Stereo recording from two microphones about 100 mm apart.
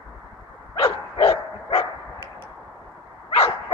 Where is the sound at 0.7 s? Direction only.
65° left (ahead or behind).